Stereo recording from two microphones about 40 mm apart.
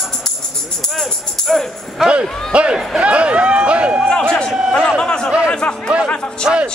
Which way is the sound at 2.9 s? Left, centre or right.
Right.